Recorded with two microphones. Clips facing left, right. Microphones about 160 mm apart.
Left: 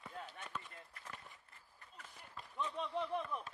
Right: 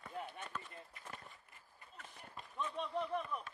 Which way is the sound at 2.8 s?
10° right (ahead or behind).